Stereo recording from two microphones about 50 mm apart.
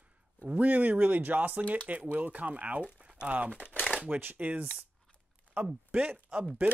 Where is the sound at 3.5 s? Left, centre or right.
Left.